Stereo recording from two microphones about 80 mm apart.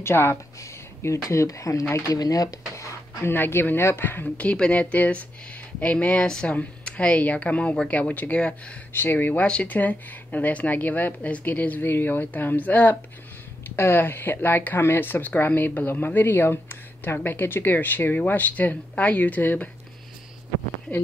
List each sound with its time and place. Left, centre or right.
0.0 s speech: left
3.3 s speech: left
8.9 s speech: left